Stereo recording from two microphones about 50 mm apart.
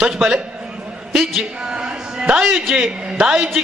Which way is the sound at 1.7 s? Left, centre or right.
Centre.